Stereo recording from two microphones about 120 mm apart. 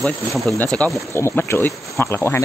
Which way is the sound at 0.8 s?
10° left (ahead or behind).